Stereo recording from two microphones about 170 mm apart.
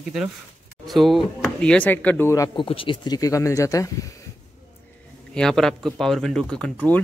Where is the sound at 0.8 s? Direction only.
Centre (ahead or behind); by 2.6 s 20° left (ahead or behind).